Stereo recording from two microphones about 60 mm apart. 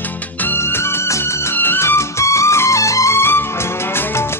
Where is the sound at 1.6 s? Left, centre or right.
Left.